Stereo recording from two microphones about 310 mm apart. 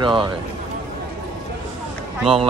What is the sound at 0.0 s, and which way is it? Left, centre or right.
Speech, centre.